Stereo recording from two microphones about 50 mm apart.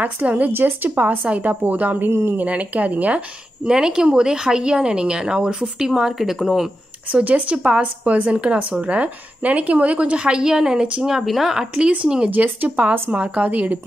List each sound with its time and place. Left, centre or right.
0.0 s speech: right
0.5 s a woman's voice: right
0.9 s speech: right
2.0 s speech: right
2.3 s speech: right
3.6 s speech: centre
7.1 s a woman's voice: right; by 11.6 s centre
12.3 s a woman's voice: right